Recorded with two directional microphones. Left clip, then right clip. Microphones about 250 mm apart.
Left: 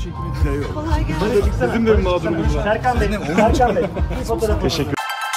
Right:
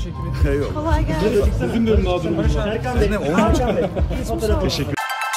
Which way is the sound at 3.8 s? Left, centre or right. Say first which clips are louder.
Left 1 dB; centre.